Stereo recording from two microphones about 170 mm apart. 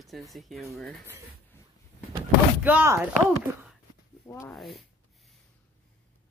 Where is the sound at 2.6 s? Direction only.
10° right (ahead or behind).